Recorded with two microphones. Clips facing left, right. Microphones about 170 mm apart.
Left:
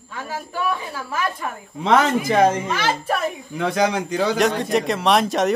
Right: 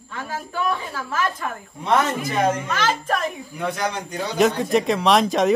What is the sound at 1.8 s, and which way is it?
Speech, 90° left.